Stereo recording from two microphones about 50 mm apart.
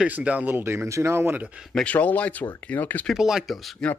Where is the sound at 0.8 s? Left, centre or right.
Right.